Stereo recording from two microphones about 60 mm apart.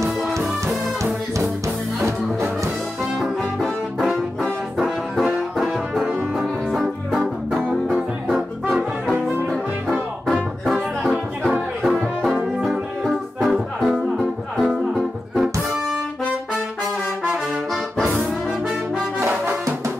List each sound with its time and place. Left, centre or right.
2.0 s music: right
3.2 s brass instrument: centre
5.6 s music: centre
12.5 s music: centre